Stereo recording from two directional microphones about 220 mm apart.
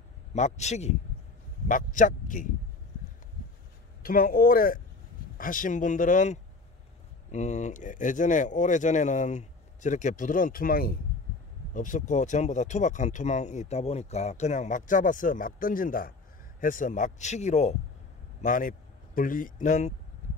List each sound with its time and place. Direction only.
0.3 s speech: 30° left (ahead or behind)
4.0 s speech: 40° left (ahead or behind)